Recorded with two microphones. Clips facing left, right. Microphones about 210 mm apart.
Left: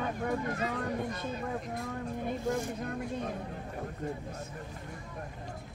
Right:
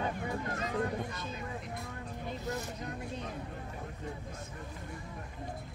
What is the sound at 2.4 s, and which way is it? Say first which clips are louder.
Speech: left 5 dB; 50° left (ahead or behind).